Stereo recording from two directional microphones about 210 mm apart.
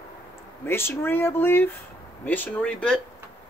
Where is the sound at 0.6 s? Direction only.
10° left (ahead or behind).